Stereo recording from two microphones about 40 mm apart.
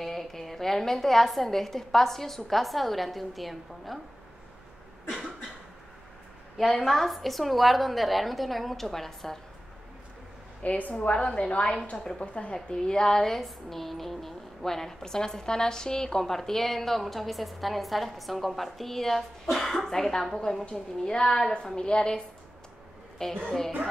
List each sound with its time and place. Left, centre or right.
0.0 s a woman's voice: centre
6.6 s a woman's voice: centre
10.6 s a woman's voice: left
11.1 s a woman's voice: left
12.6 s a woman's voice: centre
19.9 s a woman's voice: centre